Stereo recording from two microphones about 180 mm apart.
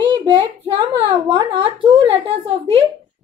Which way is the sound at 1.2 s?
30° right (ahead or behind).